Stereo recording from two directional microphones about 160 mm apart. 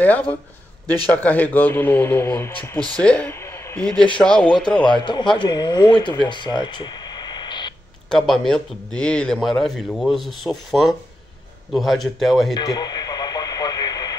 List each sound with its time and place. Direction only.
0.0 s speech: 10° left (ahead or behind)
3.8 s a man's voice: 5° left (ahead or behind)
4.8 s speech: 30° left (ahead or behind)
8.1 s a man's voice: centre (ahead or behind)
12.5 s radio: 25° left (ahead or behind)